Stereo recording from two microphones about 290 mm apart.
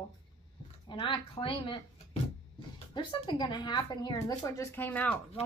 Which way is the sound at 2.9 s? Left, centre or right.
Centre.